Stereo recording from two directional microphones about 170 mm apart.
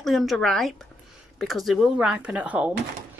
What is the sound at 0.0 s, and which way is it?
Speech, centre (ahead or behind).